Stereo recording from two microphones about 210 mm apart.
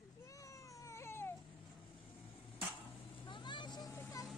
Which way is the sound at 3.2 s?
20° left (ahead or behind).